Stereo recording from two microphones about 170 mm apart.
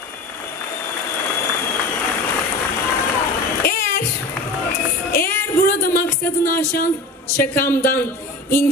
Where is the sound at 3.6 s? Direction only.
60° left (ahead or behind).